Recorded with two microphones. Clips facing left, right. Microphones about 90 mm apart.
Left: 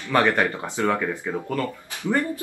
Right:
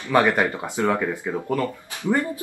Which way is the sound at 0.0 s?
15° right (ahead or behind).